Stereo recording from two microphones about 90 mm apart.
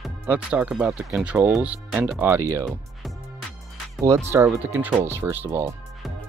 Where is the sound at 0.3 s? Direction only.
15° right (ahead or behind).